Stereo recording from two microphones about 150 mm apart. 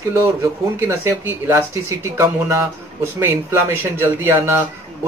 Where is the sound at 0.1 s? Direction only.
15° right (ahead or behind).